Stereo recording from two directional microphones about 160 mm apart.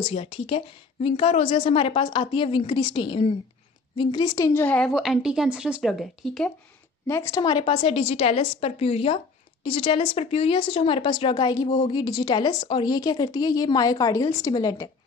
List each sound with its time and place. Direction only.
0.0 s a woman's voice: 40° left (ahead or behind); by 4.9 s 10° left (ahead or behind)
4.9 s speech: 5° right (ahead or behind)
7.1 s a woman's voice: 15° left (ahead or behind)